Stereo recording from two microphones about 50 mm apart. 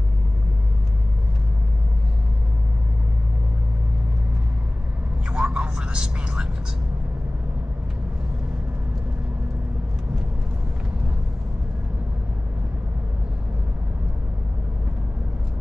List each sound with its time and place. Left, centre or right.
5.3 s vehicle: centre